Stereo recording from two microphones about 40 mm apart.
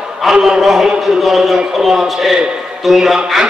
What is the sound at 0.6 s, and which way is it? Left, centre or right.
A man's voice, centre.